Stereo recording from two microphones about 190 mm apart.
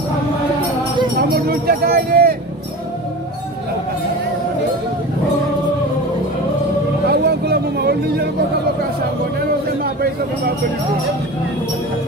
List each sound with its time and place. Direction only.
1.3 s speech: 50° right (ahead or behind)
7.1 s vehicle: 60° right (ahead or behind)